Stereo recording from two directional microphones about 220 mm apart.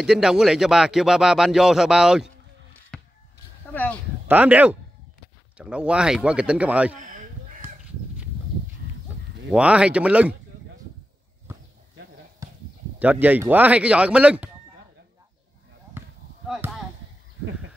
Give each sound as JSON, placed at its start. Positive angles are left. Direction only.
{"t": 0.0, "sound": "speech", "side_deg": 0}
{"t": 2.9, "sound": "a sound", "side_deg": 5}
{"t": 3.7, "sound": "speech", "side_deg": 5}
{"t": 4.3, "sound": "speech", "side_deg": -5}
{"t": 7.0, "sound": "a sound", "side_deg": -35}
{"t": 9.5, "sound": "speech", "side_deg": -5}
{"t": 12.4, "sound": "a sound", "side_deg": -15}
{"t": 13.0, "sound": "speech", "side_deg": -5}
{"t": 16.4, "sound": "chop", "side_deg": 0}